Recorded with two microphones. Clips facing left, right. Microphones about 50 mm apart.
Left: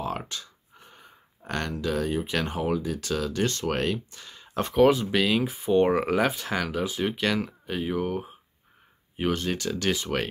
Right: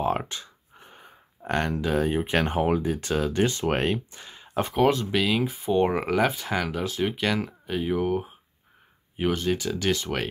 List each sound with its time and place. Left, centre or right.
0.0 s speech: right
3.4 s speech: centre
3.7 s speech: right
4.6 s speech: centre